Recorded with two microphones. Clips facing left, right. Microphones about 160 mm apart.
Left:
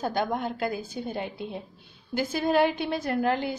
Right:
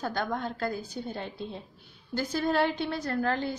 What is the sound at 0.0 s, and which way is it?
A woman's voice, 15° left (ahead or behind).